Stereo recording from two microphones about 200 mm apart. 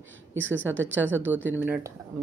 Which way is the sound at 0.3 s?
70° right (ahead or behind).